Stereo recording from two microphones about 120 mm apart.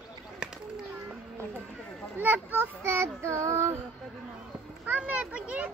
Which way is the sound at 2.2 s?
15° right (ahead or behind).